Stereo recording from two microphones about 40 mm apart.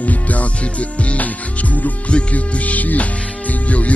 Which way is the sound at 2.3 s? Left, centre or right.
Left.